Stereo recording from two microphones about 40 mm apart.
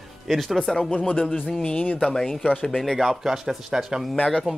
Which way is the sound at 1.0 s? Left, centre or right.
Left.